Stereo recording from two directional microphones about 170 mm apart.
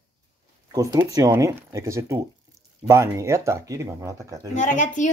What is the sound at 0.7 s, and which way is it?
Speech, 20° right (ahead or behind).